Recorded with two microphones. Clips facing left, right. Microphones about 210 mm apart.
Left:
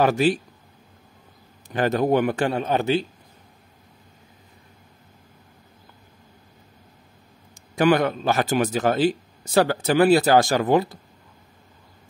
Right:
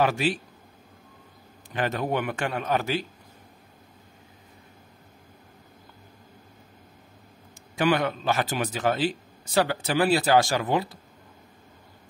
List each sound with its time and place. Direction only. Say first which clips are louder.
0.0 s a man's voice: left 5 dB; 40° left (ahead or behind)
1.7 s a man's voice: left 7 dB; 40° left (ahead or behind)
7.7 s a man's voice: left 5 dB; 45° left (ahead or behind)